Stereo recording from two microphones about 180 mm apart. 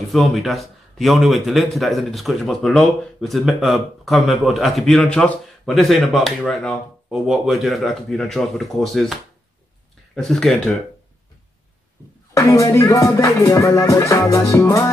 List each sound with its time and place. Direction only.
0.1 s a man's voice: centre (ahead or behind)
12.4 s music: 20° left (ahead or behind)